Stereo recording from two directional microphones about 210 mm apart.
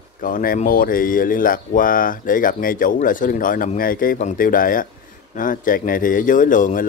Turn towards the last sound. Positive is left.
turn(degrees=40)  # may be behind; listen again after turning